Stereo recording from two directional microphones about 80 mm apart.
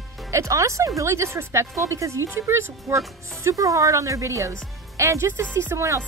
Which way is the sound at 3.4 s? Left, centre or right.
Right.